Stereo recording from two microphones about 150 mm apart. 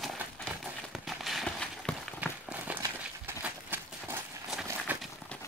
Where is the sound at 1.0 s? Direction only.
Centre (ahead or behind).